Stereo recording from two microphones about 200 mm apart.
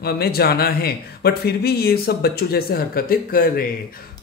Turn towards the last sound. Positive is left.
turn(degrees=45)  # may be behind; listen again after turning